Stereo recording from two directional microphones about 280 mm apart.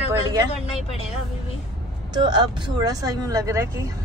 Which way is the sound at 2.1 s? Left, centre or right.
Centre.